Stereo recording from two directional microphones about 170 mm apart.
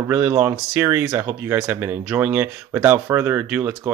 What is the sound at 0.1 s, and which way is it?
Speech, 10° right (ahead or behind).